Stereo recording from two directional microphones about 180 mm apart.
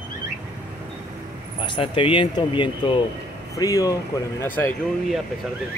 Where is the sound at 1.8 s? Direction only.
30° left (ahead or behind); by 4.7 s 10° left (ahead or behind).